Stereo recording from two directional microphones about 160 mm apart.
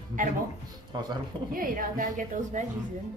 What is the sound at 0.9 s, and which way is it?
Speech, 30° right (ahead or behind).